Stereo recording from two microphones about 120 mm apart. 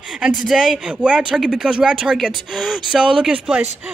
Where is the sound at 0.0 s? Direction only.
5° right (ahead or behind).